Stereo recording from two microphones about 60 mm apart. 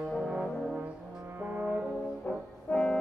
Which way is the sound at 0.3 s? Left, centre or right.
Centre.